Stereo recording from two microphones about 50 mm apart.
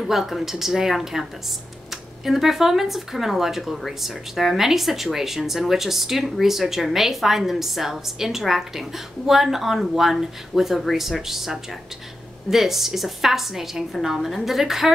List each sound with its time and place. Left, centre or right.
0.0 s a woman's voice: centre